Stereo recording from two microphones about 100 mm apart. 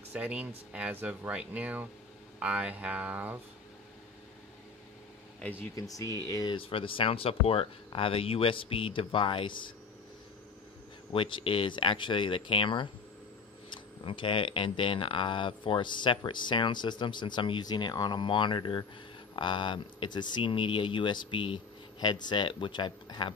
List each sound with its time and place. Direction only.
0.1 s speech: 15° right (ahead or behind)
5.4 s speech: 20° left (ahead or behind)
5.8 s speech: 35° left (ahead or behind)
6.5 s speech: 60° left (ahead or behind)
11.1 s speech: 55° left (ahead or behind)